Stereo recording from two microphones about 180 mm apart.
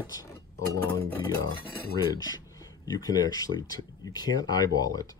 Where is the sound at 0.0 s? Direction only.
20° left (ahead or behind).